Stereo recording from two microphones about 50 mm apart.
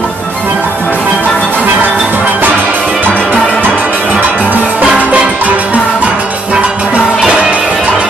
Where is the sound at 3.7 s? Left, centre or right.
Right.